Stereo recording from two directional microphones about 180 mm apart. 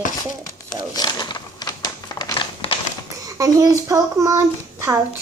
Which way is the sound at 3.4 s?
20° right (ahead or behind).